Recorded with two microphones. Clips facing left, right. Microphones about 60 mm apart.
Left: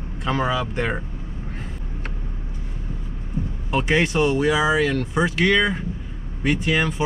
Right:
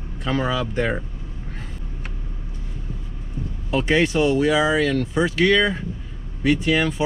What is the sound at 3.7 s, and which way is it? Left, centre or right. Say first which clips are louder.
Speech: right 1 dB; centre.